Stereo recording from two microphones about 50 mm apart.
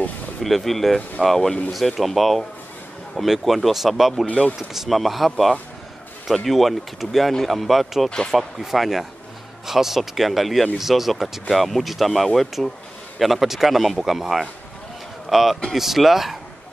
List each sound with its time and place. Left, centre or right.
0.4 s speech: centre
4.3 s speech: left
4.6 s speech: centre